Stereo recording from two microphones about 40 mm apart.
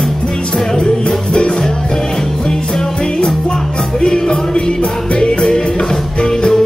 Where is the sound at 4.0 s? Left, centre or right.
Left.